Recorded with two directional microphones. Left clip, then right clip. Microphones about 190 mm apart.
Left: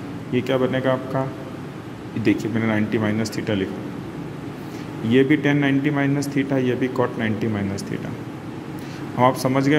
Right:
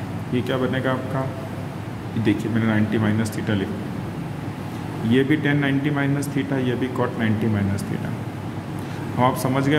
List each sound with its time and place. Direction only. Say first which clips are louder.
0.3 s a man's voice: left 3 dB; 15° left (ahead or behind)
2.2 s speech: left 1 dB; 20° left (ahead or behind)
5.1 s a man's voice: left 3 dB; 20° left (ahead or behind)
9.2 s a man's voice: left 2 dB; 15° left (ahead or behind)